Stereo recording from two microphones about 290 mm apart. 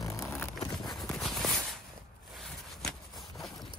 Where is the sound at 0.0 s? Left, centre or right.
Centre.